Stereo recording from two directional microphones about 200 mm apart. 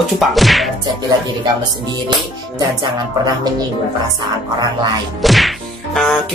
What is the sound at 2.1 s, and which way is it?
Music, 20° right (ahead or behind).